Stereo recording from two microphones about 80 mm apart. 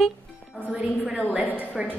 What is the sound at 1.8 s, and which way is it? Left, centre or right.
Speech, centre.